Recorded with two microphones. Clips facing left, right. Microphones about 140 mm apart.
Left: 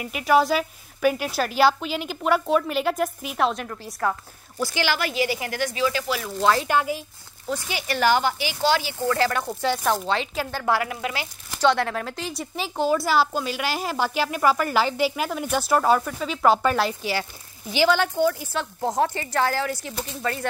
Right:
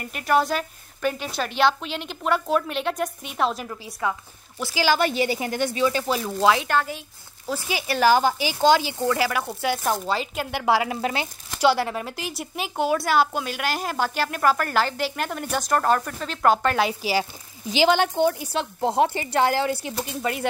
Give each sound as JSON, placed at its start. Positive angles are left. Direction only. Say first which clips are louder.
{"t": 0.0, "sound": "a woman's voice", "louder": "left 2 dB", "side_deg": 5}
{"t": 4.9, "sound": "speech", "louder": "right 3 dB", "side_deg": -25}
{"t": 6.4, "sound": "a woman's voice", "louder": "right 1 dB", "side_deg": 0}
{"t": 6.7, "sound": "speech", "louder": "left 1 dB", "side_deg": 10}
{"t": 7.4, "sound": "speech", "louder": "right 1 dB", "side_deg": -5}
{"t": 10.5, "sound": "speech", "louder": "right 3 dB", "side_deg": -15}
{"t": 10.9, "sound": "speech", "louder": "right 3 dB", "side_deg": -30}
{"t": 11.6, "sound": "a woman's voice", "louder": "even", "side_deg": -5}
{"t": 17.0, "sound": "speech", "louder": "right 3 dB", "side_deg": -15}
{"t": 20.1, "sound": "speech", "louder": "even", "side_deg": -15}